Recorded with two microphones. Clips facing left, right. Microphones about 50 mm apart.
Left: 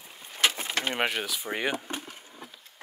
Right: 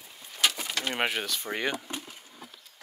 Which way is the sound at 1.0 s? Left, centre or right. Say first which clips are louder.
Left 1 dB; centre.